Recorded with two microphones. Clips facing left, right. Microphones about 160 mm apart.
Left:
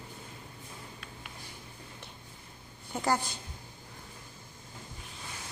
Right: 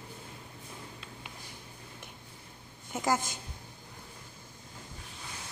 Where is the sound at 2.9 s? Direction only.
5° right (ahead or behind).